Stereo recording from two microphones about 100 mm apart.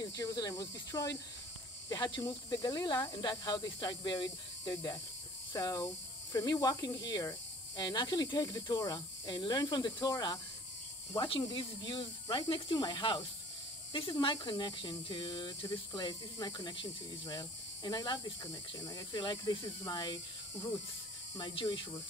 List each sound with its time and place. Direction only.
0.0 s speech: 40° left (ahead or behind)
11.1 s speech: 55° left (ahead or behind)
18.4 s speech: 35° left (ahead or behind)
21.6 s speech: 40° left (ahead or behind)